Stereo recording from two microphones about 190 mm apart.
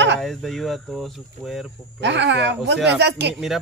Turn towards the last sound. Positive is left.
turn(degrees=-65)  # may be behind; listen again after turning